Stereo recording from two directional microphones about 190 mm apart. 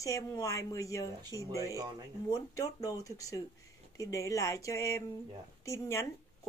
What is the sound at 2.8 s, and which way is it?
Speech, 20° left (ahead or behind).